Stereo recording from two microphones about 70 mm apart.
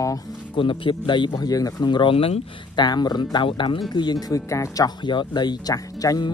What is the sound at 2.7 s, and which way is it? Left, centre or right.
Speech, left.